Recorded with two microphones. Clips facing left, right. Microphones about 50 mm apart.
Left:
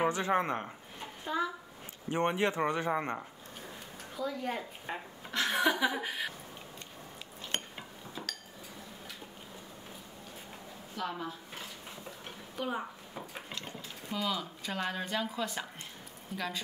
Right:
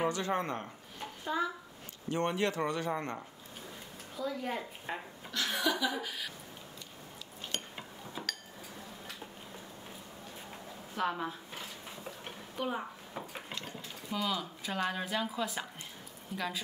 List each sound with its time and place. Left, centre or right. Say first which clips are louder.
0.0 s speech: left 3 dB; left
1.2 s a child's voice: even; centre
2.0 s speech: left 2 dB; left
4.2 s a woman's voice: left 1 dB; centre
5.3 s speech: left 3 dB; left
7.7 s cutlery: right 1 dB; centre
11.0 s speech: right 3 dB; right
12.5 s speech: even; centre
13.1 s a sound: right 1 dB; centre
14.1 s a woman's voice: even; centre